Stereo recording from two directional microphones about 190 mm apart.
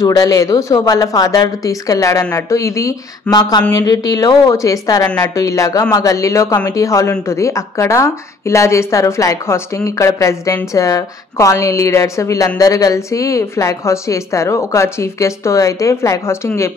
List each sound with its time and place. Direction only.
0.0 s a woman's voice: 20° left (ahead or behind)